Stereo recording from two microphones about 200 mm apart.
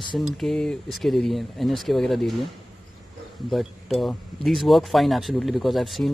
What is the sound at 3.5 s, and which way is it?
Speech, centre (ahead or behind).